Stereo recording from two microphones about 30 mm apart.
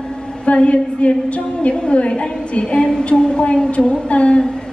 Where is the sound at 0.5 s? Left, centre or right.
Left.